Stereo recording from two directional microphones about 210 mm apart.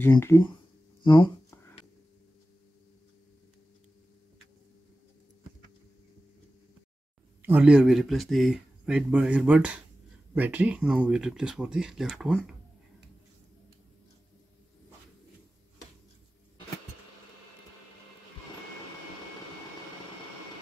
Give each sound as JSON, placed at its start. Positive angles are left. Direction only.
{"t": 0.0, "sound": "speech", "side_deg": 10}
{"t": 1.0, "sound": "a sound", "side_deg": 20}
{"t": 7.4, "sound": "speech", "side_deg": -5}